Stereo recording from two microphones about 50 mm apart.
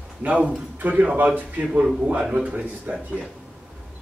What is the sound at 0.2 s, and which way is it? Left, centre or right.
A man's voice, right.